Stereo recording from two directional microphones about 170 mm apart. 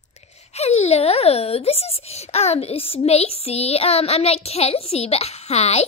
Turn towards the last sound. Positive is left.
turn(degrees=40)  # may be behind; listen again after turning